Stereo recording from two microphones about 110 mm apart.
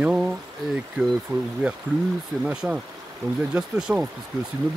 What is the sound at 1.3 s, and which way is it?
Speech, 25° right (ahead or behind).